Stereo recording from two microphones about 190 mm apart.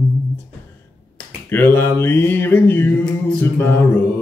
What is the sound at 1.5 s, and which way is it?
Mantra, 10° left (ahead or behind).